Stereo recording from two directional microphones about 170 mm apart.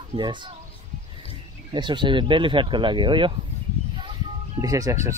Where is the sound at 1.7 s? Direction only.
25° right (ahead or behind).